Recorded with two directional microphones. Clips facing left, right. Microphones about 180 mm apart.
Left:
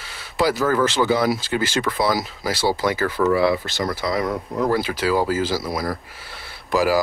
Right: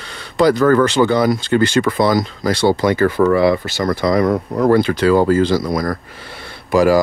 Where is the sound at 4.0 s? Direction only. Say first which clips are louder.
Right 10 dB; 55° right (ahead or behind).